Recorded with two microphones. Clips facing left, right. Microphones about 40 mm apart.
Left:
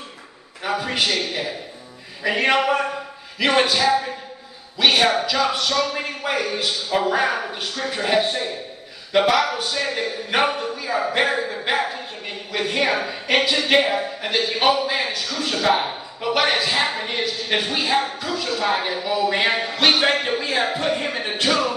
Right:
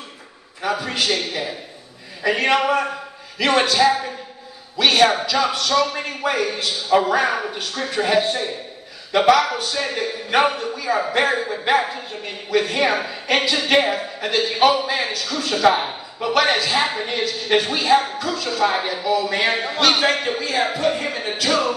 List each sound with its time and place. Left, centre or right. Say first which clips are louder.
0.6 s a man's voice: even; centre